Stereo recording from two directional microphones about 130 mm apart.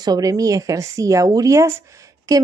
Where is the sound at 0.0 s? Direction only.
30° right (ahead or behind).